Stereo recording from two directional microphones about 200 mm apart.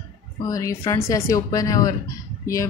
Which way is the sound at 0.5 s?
15° left (ahead or behind).